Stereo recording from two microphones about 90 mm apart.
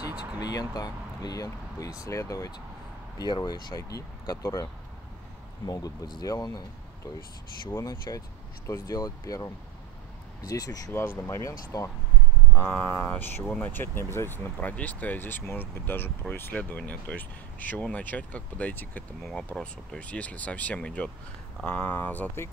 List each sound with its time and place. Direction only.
0.1 s a sound: 15° right (ahead or behind)
0.4 s speech: 45° left (ahead or behind)
3.2 s speech: 50° left (ahead or behind)
5.7 s speech: 45° left (ahead or behind)
7.7 s speech: 40° left (ahead or behind)
10.9 s speech: 25° left (ahead or behind)
12.5 s speech: 15° left (ahead or behind)